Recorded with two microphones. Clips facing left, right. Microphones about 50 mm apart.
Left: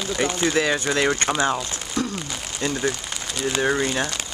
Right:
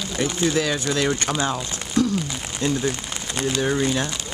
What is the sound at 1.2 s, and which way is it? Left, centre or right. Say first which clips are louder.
Speech: left 2 dB; centre.